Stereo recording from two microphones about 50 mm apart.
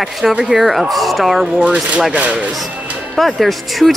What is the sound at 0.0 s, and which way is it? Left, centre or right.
Speech, centre.